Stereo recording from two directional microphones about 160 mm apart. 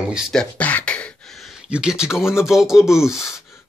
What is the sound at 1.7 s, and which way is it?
Speech, 5° right (ahead or behind).